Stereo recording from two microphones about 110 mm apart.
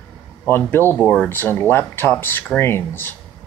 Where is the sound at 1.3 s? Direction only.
20° left (ahead or behind).